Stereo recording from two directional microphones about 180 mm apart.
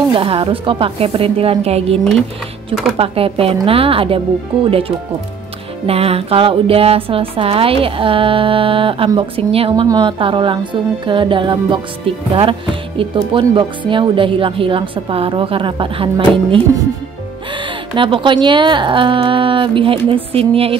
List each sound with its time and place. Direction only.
0.1 s speech: 30° right (ahead or behind)
3.0 s speech: 30° right (ahead or behind)
17.9 s speech: 30° right (ahead or behind)